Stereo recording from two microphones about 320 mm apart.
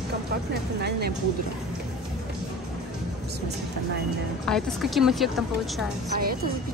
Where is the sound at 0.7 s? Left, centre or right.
Right.